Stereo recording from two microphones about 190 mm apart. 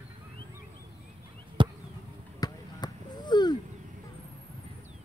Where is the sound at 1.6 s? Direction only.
25° right (ahead or behind).